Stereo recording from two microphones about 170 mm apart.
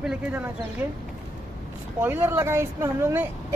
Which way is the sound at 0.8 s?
10° right (ahead or behind).